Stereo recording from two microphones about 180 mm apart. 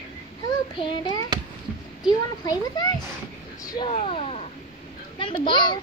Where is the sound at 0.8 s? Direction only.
25° left (ahead or behind).